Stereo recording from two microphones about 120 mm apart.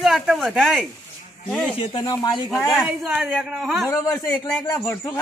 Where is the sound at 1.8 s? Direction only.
45° left (ahead or behind).